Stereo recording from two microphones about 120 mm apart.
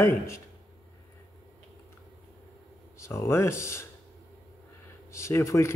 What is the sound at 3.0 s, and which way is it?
Speech, 25° left (ahead or behind).